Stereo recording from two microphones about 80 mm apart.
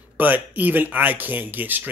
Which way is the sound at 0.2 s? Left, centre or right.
Right.